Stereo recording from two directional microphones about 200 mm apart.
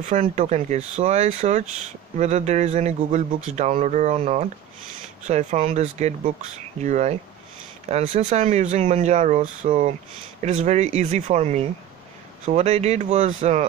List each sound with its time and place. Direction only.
0.0 s speech: 40° right (ahead or behind)